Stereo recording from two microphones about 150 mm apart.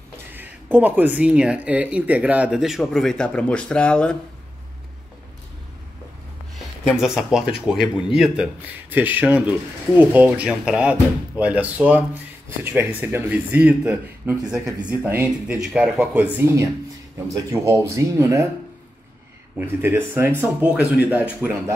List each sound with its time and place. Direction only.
0.3 s speech: 10° right (ahead or behind); by 4.2 s 5° left (ahead or behind)
6.9 s speech: 5° right (ahead or behind)
17.5 s speech: 20° right (ahead or behind)
19.6 s speech: 15° right (ahead or behind)